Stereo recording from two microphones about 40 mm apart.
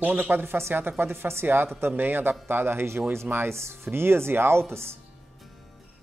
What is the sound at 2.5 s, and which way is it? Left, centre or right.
A man's voice, right.